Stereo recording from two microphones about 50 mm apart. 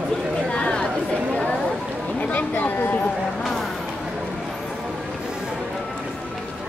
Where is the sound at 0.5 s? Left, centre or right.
Left.